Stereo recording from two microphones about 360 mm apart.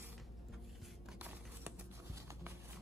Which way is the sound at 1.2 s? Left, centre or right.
Centre.